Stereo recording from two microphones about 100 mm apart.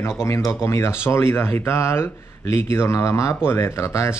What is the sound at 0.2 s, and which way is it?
Speech, 30° left (ahead or behind).